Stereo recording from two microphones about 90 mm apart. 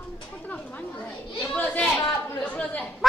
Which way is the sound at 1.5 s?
15° left (ahead or behind).